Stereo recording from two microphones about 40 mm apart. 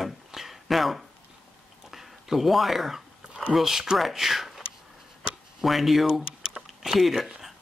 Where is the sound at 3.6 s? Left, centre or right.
Centre.